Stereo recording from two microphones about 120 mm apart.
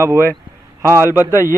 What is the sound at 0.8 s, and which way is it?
Speech, 20° left (ahead or behind).